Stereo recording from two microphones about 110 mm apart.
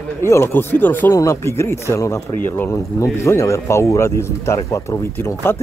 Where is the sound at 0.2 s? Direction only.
25° left (ahead or behind).